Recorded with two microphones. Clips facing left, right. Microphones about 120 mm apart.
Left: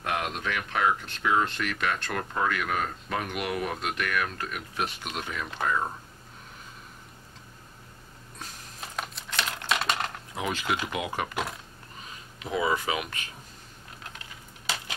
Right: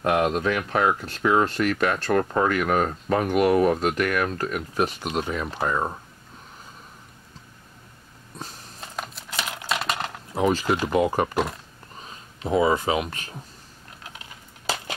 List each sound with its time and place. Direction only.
0.0 s speech: 40° right (ahead or behind)
8.9 s typing: centre (ahead or behind)
10.3 s speech: 35° right (ahead or behind)